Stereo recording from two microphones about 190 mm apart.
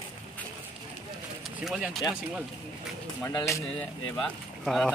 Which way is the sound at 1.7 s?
Centre (ahead or behind).